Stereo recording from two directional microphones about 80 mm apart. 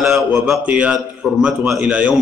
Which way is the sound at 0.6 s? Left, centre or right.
Centre.